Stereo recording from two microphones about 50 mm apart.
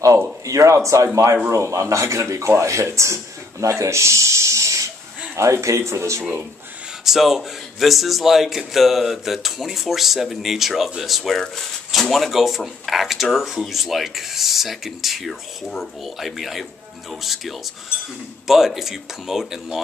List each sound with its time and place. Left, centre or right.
0.5 s speech: right
7.1 s speech: centre